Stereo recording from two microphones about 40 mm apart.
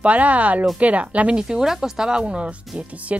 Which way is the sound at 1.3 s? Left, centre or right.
Centre.